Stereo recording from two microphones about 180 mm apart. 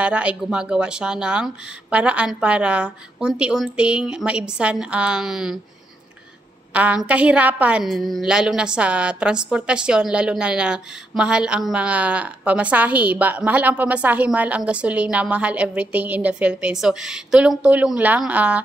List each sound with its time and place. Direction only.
0.0 s speech: 5° right (ahead or behind)
6.7 s a woman's voice: 5° right (ahead or behind)